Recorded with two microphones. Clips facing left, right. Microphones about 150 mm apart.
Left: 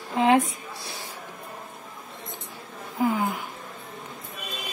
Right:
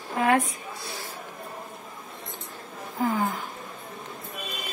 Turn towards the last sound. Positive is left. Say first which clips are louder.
# left 1 dB
turn(degrees=10)  # may be behind; listen again after turning